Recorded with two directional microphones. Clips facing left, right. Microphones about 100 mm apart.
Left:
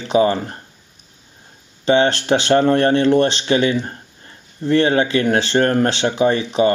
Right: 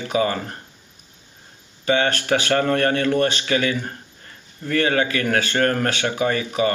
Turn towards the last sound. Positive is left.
turn(degrees=25)  # may be behind; listen again after turning